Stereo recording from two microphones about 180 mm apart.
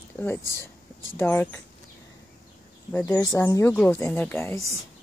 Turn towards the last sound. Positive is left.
turn(degrees=10)  # may be behind; listen again after turning